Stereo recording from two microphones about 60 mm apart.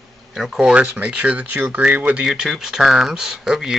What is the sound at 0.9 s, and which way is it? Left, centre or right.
Speech, right.